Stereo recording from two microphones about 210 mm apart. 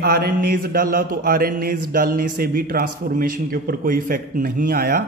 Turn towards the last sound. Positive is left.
turn(degrees=-45)  # may be behind; listen again after turning